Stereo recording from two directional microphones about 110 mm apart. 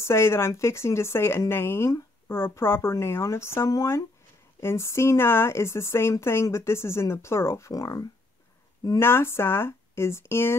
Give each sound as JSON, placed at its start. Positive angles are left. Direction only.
{"t": 0.0, "sound": "speech", "side_deg": 25}
{"t": 9.0, "sound": "speech", "side_deg": 20}